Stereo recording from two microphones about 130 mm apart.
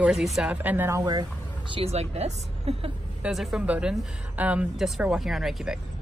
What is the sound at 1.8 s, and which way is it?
A woman's voice, 55° right (ahead or behind).